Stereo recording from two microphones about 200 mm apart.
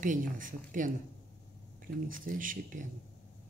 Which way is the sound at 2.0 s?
45° right (ahead or behind).